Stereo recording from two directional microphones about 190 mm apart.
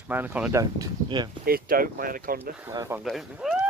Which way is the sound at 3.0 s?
Centre (ahead or behind).